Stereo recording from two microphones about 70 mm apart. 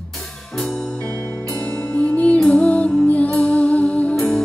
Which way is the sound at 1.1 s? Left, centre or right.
Right.